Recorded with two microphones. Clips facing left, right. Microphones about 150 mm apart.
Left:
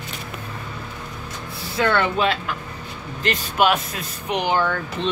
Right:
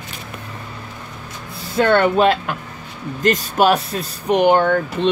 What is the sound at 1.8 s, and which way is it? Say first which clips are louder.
Speech: right 6 dB; 50° right (ahead or behind).